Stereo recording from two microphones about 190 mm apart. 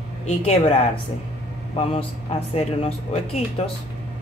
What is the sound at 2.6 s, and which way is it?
Speech, 35° left (ahead or behind).